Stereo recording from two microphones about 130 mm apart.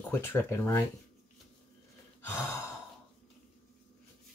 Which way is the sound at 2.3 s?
20° left (ahead or behind).